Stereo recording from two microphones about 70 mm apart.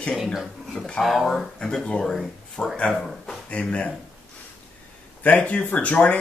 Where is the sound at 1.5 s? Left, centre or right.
Centre.